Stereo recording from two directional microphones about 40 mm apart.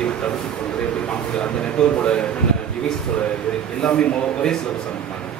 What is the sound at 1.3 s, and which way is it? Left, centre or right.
Speech, left.